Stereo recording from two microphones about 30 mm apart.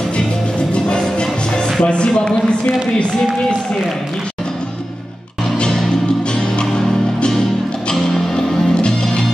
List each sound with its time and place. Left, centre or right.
0.7 s music: left
1.8 s speech: left
7.9 s music: centre